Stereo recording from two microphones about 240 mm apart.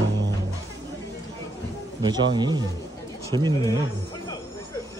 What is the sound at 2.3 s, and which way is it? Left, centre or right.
A man's voice, centre.